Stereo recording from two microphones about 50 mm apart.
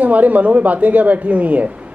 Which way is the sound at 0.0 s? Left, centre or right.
Right.